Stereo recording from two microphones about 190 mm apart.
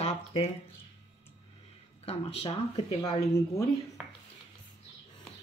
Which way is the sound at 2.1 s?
30° left (ahead or behind).